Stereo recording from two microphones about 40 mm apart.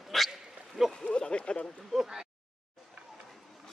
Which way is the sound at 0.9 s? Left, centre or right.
Left.